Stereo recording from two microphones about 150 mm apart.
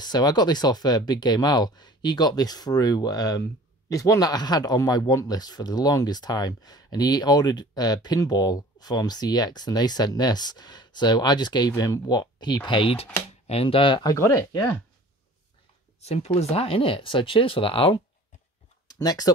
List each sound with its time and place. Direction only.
0.0 s speech: 30° left (ahead or behind)
14.1 s speech: 20° left (ahead or behind)
16.0 s speech: 45° left (ahead or behind)
18.9 s speech: 25° left (ahead or behind)